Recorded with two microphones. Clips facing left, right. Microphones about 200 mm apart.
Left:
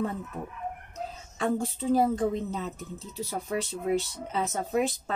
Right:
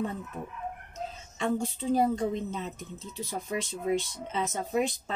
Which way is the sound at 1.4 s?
5° left (ahead or behind).